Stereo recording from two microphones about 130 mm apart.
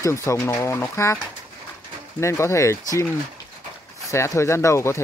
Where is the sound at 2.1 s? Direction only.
20° left (ahead or behind).